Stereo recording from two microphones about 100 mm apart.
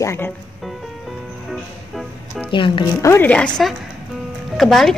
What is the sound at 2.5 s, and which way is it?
Speech, 55° left (ahead or behind).